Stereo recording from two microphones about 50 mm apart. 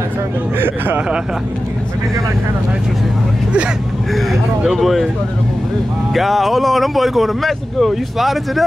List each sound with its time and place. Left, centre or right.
0.6 s speech: right
4.1 s speech: centre
6.1 s speech: centre